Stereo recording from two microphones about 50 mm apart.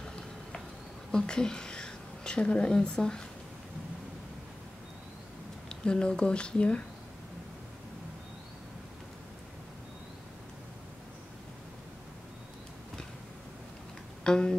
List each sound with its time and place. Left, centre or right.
0.0 s a sound: centre
1.1 s speech: centre
5.7 s speech: centre
14.2 s speech: centre